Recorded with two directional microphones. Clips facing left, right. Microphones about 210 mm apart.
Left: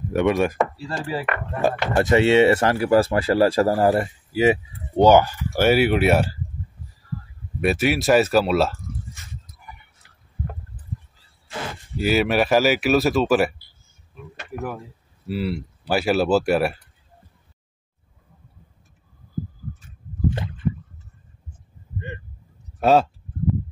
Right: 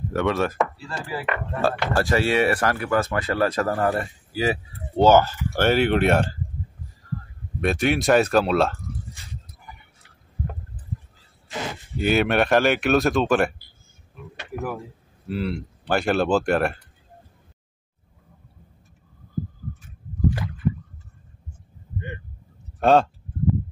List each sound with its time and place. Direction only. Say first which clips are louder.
0.1 s chopping: left 4 dB; 15° left (ahead or behind)
1.1 s speech: right 2 dB; 20° left (ahead or behind)
7.6 s speech: left 1 dB; 5° left (ahead or behind)
12.0 s speech: left 1 dB; centre (ahead or behind)
20.2 s rowboat: even; 25° left (ahead or behind)
22.8 s speech: even; 5° left (ahead or behind)